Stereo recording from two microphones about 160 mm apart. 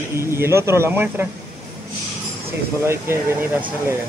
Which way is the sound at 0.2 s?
15° right (ahead or behind).